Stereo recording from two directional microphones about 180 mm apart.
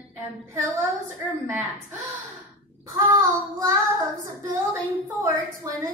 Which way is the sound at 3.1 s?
20° right (ahead or behind).